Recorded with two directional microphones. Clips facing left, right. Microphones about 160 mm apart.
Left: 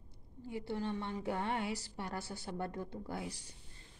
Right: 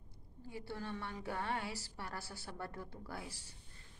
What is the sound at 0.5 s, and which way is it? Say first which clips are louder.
A woman's voice: left 6 dB; 20° left (ahead or behind).